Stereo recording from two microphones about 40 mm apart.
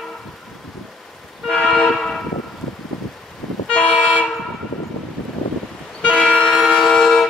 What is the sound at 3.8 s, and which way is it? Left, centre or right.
Vehicle, left.